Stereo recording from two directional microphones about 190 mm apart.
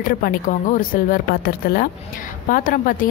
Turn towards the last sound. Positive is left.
turn(degrees=45)  # may be behind; listen again after turning